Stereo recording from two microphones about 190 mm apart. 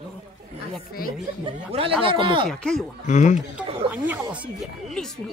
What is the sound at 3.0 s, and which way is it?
Speech, 40° left (ahead or behind).